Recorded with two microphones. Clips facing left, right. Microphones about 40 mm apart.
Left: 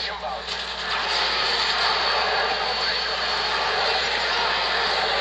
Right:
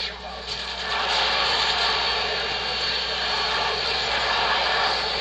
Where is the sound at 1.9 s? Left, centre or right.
Centre.